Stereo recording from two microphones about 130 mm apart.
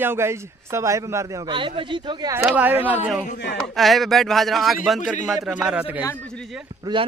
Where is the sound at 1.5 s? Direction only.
40° right (ahead or behind).